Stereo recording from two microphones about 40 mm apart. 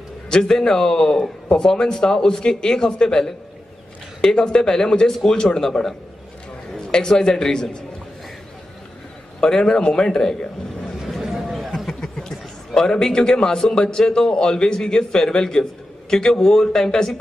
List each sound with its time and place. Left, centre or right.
0.3 s a man's voice: centre
9.4 s a man's voice: centre
11.2 s a sound: centre
11.7 s a man's voice: centre